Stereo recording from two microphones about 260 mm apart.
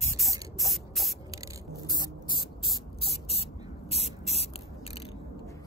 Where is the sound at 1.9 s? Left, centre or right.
Centre.